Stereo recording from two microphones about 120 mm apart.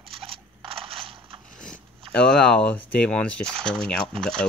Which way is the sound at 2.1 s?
5° left (ahead or behind).